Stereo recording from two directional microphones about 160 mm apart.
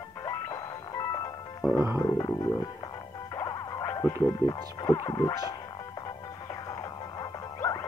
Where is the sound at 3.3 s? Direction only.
20° left (ahead or behind).